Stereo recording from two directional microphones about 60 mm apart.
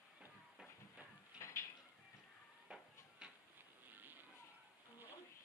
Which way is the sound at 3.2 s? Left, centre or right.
Centre.